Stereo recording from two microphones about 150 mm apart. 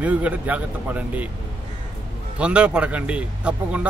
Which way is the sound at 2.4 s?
10° right (ahead or behind).